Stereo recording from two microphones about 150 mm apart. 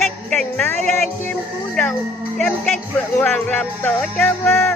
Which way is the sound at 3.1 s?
15° left (ahead or behind).